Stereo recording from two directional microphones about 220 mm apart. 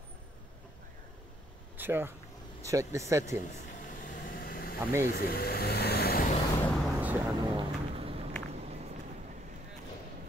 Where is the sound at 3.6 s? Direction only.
35° left (ahead or behind).